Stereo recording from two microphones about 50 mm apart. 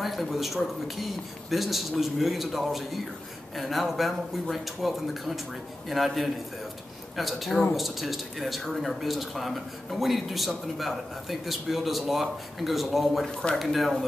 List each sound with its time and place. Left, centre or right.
0.0 s speech: centre
13.3 s speech: centre
13.6 s speech: centre